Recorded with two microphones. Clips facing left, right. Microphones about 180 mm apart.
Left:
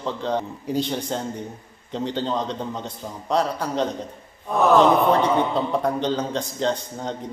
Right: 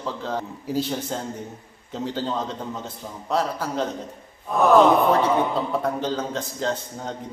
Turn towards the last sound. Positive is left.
turn(degrees=-5)  # may be behind; listen again after turning